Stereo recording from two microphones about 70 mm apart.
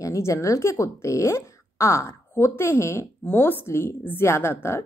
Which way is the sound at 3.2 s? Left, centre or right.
Left.